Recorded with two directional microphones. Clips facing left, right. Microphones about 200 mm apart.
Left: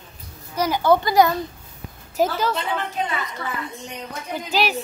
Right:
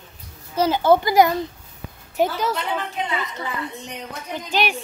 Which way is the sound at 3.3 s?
20° right (ahead or behind).